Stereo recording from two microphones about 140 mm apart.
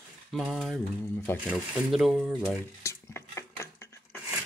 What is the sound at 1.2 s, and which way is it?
Speech, 10° left (ahead or behind).